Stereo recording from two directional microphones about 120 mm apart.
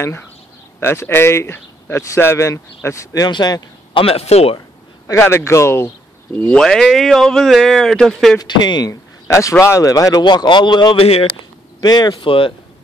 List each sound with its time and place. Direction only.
0.7 s speech: 20° left (ahead or behind)
3.3 s speech: 35° left (ahead or behind)
4.0 s speech: 55° left (ahead or behind)
5.0 s speech: 20° left (ahead or behind)
6.3 s speech: 10° left (ahead or behind)
8.4 s speech: 35° left (ahead or behind); by 11.2 s 55° left (ahead or behind)
11.8 s speech: 35° left (ahead or behind)
12.3 s speech: 45° left (ahead or behind)